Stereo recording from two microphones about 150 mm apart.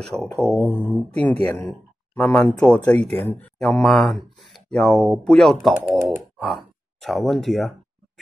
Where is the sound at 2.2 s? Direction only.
10° left (ahead or behind).